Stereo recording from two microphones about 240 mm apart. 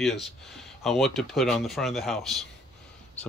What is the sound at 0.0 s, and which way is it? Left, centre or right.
Speech, centre.